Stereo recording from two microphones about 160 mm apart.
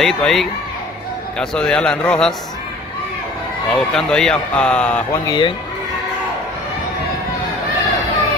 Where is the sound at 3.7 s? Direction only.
5° left (ahead or behind).